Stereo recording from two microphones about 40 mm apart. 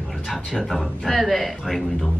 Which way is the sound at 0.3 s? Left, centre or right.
Centre.